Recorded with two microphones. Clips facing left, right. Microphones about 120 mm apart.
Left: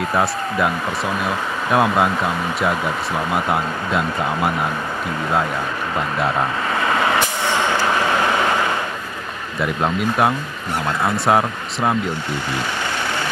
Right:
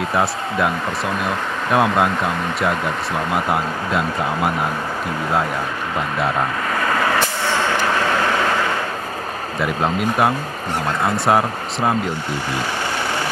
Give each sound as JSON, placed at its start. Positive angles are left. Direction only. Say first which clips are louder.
{"t": 0.1, "sound": "speech", "louder": "left 1 dB", "side_deg": 0}
{"t": 6.8, "sound": "vehicle", "louder": "even", "side_deg": 20}
{"t": 9.6, "sound": "speech", "louder": "even", "side_deg": 0}